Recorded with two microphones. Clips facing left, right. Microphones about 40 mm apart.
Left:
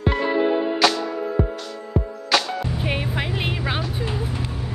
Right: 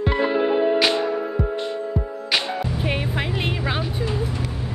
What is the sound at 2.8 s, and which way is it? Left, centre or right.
Music, centre.